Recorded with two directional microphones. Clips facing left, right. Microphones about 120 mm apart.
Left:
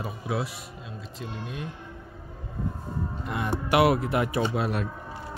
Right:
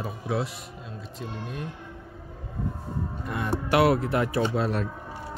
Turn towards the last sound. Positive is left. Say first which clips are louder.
# right 1 dB
turn(degrees=10)  # may be behind; listen again after turning